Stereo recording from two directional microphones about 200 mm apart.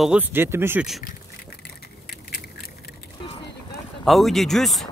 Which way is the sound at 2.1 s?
45° left (ahead or behind).